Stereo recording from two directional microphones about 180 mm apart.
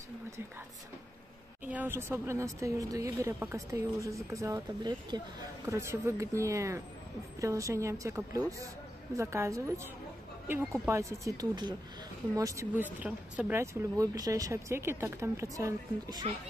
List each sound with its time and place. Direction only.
1.7 s speech: 10° right (ahead or behind)